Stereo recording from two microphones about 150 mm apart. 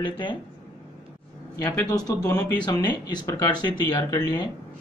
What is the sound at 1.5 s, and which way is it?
Speech, 25° left (ahead or behind).